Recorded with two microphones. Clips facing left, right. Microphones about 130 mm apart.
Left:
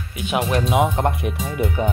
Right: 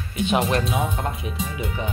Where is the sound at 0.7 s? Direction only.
65° left (ahead or behind).